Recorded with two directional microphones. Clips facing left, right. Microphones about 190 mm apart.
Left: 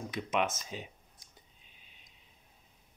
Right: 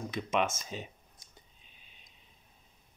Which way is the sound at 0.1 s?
15° left (ahead or behind).